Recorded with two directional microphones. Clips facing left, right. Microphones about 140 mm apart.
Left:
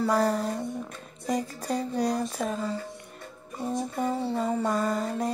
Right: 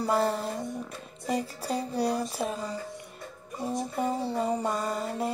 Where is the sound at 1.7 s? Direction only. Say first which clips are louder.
Left 1 dB; 10° right (ahead or behind).